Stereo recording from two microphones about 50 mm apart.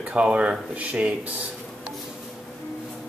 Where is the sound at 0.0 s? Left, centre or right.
Right.